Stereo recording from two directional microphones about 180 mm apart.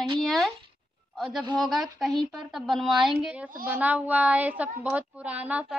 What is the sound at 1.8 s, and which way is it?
A woman's voice, centre (ahead or behind).